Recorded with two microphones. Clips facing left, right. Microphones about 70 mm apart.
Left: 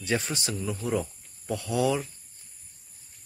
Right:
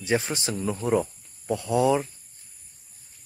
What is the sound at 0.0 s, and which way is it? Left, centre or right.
Speech, right.